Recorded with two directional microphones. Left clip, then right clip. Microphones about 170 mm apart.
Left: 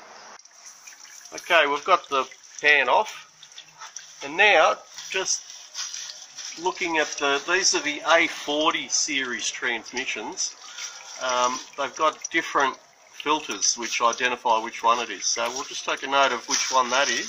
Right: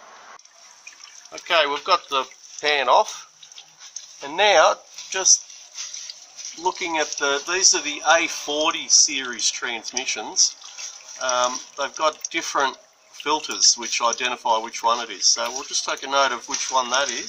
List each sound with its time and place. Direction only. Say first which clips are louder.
1.5 s speech: even; 15° right (ahead or behind)
4.2 s speech: right 2 dB; 25° right (ahead or behind)
6.6 s speech: right 1 dB; 15° right (ahead or behind)
11.1 s speech: right 2 dB; 15° right (ahead or behind)